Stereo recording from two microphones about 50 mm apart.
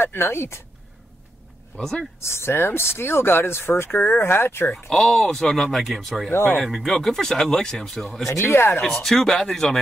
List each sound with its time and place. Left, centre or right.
0.0 s speech: left
1.8 s speech: centre
2.1 s speech: left
4.7 s speech: centre
8.5 s speech: left
8.8 s speech: centre